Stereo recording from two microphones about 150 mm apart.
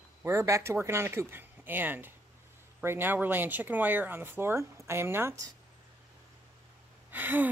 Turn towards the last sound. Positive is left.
turn(degrees=-10)  # may be behind; listen again after turning